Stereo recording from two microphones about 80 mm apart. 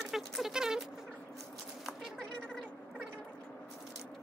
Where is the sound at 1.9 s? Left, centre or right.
Centre.